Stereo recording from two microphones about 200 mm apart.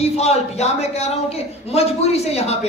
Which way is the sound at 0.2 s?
35° left (ahead or behind).